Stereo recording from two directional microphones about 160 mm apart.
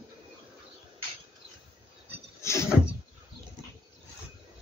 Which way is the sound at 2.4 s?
20° left (ahead or behind).